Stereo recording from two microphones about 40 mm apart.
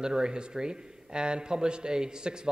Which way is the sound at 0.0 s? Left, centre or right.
Centre.